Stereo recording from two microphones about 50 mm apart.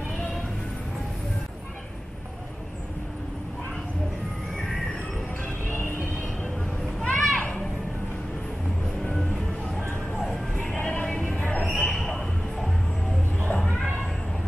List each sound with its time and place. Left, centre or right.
5.7 s music: left
7.1 s children playing: left
10.1 s music: centre
10.8 s music: left
11.3 s a sound: left
11.7 s a sound: centre
13.4 s cat: left